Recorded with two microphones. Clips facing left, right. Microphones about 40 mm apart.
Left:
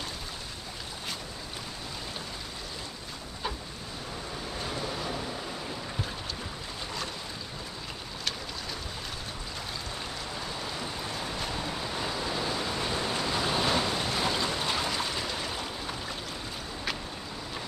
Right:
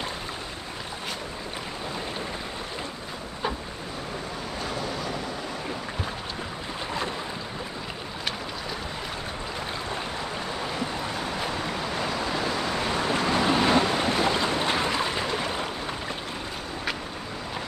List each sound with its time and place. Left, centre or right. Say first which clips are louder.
11.6 s waves: right 4 dB; right